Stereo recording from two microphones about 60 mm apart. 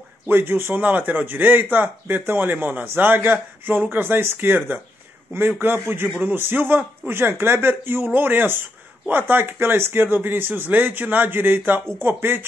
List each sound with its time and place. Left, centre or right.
0.3 s speech: right